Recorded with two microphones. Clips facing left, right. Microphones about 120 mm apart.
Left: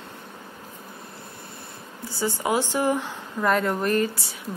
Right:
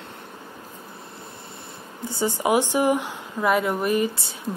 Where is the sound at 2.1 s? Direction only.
20° right (ahead or behind).